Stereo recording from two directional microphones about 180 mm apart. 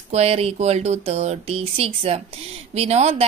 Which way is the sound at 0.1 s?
35° right (ahead or behind).